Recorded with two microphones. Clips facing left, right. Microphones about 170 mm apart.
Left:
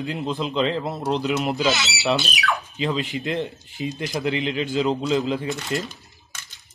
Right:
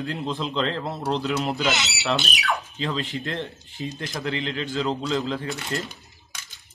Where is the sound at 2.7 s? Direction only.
15° left (ahead or behind).